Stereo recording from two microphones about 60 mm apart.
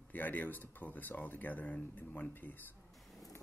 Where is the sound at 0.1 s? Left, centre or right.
Left.